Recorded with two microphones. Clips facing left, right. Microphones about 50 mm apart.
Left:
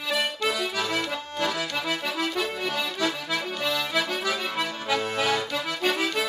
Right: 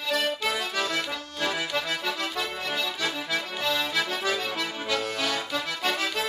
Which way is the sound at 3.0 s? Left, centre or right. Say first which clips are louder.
Left 2 dB; centre.